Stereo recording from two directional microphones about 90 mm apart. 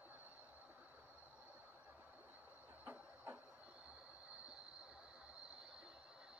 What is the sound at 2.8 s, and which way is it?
Printer, 20° right (ahead or behind).